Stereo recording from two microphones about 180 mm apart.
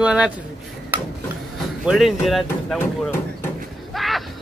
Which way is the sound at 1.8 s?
Centre (ahead or behind).